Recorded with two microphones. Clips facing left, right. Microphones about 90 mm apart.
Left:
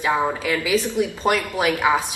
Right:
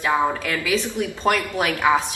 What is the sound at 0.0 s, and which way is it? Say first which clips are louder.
A woman's voice: even; 15° left (ahead or behind).